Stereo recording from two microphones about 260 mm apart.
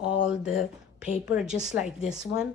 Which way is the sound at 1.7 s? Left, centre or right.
Left.